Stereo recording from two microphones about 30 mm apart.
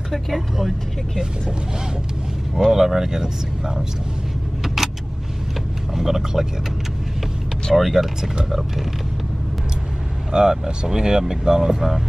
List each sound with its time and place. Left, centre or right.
0.6 s speech: centre
2.7 s speech: centre
5.9 s speech: centre
7.7 s speech: centre
10.3 s speech: right